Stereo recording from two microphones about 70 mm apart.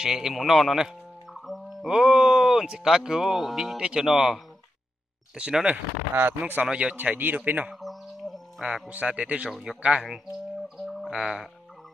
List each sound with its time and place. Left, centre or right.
0.0 s music: centre
1.9 s speech: centre
6.1 s speech: right
6.7 s speech: centre
7.0 s speech: right
7.8 s bird: centre
8.8 s speech: centre
11.1 s speech: centre